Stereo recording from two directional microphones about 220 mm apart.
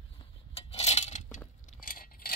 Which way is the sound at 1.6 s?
40° left (ahead or behind).